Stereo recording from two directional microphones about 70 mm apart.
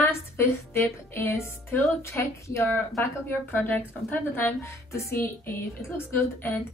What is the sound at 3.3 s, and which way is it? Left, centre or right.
Speech, left.